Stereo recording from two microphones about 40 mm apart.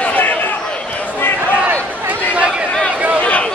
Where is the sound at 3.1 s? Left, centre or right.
Left.